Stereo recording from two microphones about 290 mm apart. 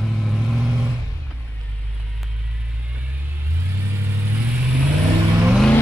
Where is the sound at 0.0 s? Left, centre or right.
Centre.